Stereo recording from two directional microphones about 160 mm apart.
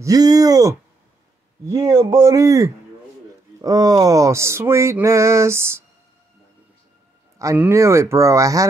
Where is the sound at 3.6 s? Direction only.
25° right (ahead or behind).